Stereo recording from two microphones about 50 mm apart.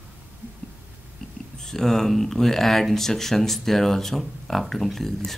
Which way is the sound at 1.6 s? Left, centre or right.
Centre.